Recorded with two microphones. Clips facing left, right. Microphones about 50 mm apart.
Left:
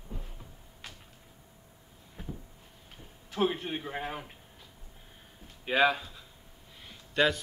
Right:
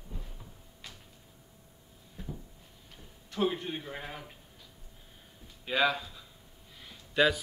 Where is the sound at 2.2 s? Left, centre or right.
Left.